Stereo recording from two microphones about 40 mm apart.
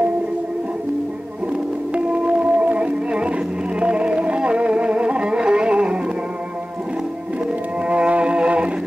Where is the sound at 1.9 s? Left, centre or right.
Right.